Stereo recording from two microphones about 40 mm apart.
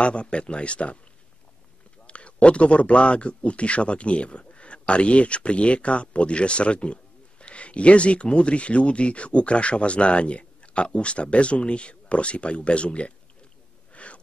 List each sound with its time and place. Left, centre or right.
0.0 s speech: left
2.0 s speech: left
13.9 s wheeze: left